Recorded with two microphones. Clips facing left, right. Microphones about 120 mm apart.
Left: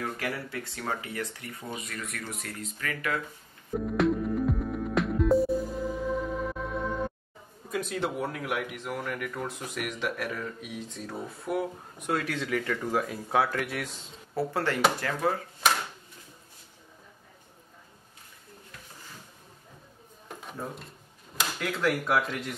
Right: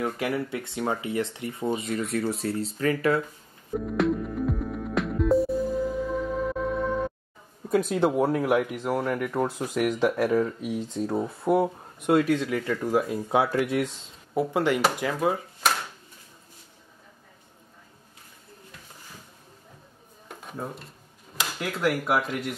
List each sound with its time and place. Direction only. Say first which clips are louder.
0.0 s speech: right 6 dB; 20° right (ahead or behind)
3.7 s music: right 1 dB; centre (ahead or behind)
7.7 s speech: right 8 dB; 35° right (ahead or behind)
12.3 s speech: right 5 dB; 15° right (ahead or behind)
20.2 s a sound: right 2 dB; centre (ahead or behind)
21.4 s speech: right 1 dB; 5° right (ahead or behind)